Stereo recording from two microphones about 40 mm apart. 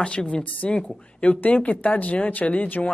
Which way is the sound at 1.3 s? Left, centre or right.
Left.